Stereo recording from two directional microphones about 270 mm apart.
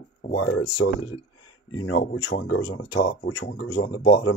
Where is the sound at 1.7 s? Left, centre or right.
Left.